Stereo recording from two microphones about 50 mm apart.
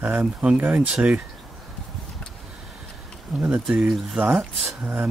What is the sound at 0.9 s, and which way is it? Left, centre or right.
Speech, right.